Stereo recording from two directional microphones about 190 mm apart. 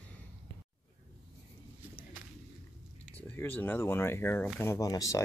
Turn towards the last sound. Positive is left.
turn(degrees=20)  # may be behind; listen again after turning